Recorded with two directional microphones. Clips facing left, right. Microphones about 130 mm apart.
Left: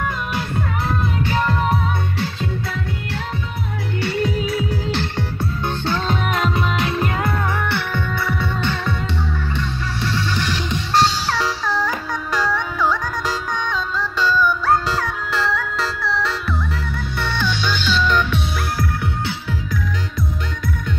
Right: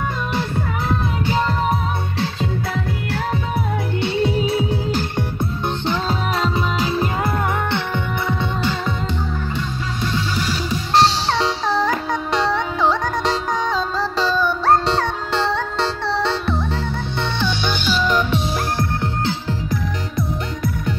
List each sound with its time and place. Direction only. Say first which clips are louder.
4.0 s music: right 2 dB; 25° right (ahead or behind)
5.1 s music: right 1 dB; 15° right (ahead or behind)
6.4 s music: even; 30° right (ahead or behind)
7.6 s music: right 1 dB; 20° right (ahead or behind)
10.4 s music: right 1 dB; 5° right (ahead or behind)
11.0 s music: right 2 dB; 25° right (ahead or behind)